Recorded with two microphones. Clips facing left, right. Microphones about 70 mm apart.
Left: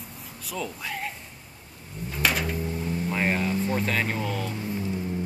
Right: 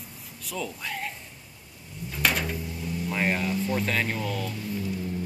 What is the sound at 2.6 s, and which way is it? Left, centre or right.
Vehicle, left.